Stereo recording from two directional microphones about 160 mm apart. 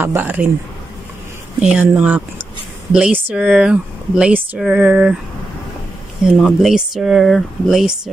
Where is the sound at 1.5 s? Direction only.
5° right (ahead or behind).